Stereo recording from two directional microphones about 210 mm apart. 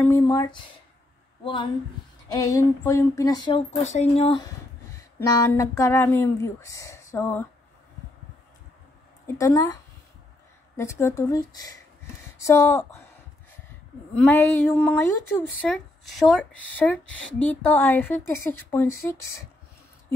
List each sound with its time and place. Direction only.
0.0 s a woman's voice: 15° left (ahead or behind)
5.2 s speech: 15° left (ahead or behind)
9.4 s speech: 15° left (ahead or behind)
10.8 s speech: 15° left (ahead or behind)
14.1 s speech: 5° left (ahead or behind)